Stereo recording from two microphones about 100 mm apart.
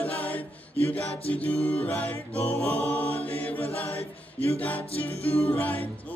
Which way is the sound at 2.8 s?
15° left (ahead or behind).